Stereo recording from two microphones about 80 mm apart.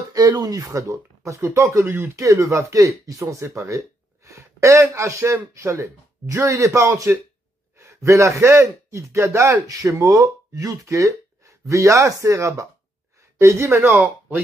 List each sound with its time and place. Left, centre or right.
0.1 s speech: right